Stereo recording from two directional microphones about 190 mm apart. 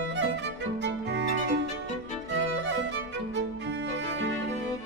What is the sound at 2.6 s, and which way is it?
Music, 70° right (ahead or behind).